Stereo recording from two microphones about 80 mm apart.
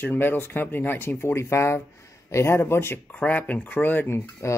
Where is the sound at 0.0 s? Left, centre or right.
Left.